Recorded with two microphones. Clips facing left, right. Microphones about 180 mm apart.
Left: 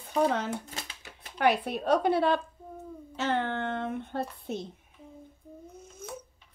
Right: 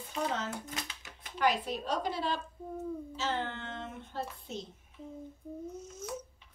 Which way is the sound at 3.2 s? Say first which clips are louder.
Left 9 dB; 60° left (ahead or behind).